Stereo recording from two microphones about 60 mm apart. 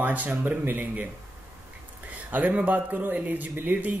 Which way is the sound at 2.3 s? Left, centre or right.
Right.